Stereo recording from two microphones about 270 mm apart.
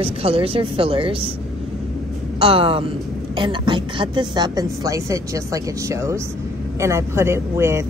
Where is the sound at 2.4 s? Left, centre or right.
Centre.